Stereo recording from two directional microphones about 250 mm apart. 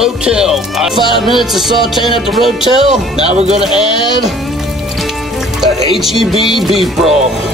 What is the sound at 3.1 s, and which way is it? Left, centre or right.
Speech, right.